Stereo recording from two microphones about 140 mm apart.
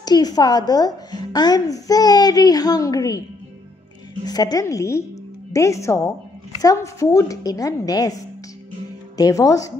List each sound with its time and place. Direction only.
0.0 s a child's voice: 30° left (ahead or behind)